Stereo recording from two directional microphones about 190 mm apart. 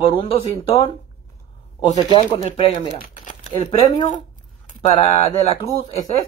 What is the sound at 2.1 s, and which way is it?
Speech, 35° left (ahead or behind).